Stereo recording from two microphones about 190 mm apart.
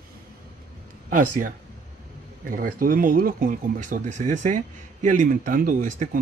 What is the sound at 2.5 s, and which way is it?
Speech, 45° right (ahead or behind).